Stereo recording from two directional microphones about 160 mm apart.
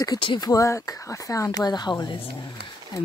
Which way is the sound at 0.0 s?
30° left (ahead or behind).